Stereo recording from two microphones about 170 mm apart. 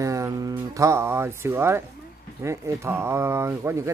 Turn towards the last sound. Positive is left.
turn(degrees=-15)  # may be behind; listen again after turning